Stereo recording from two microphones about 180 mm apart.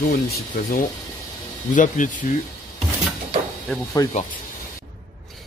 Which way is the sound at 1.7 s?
45° left (ahead or behind).